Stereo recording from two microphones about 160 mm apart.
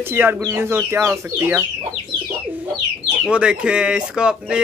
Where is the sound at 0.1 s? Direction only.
10° right (ahead or behind).